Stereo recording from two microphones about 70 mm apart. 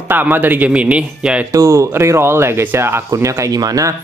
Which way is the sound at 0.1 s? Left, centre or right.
Right.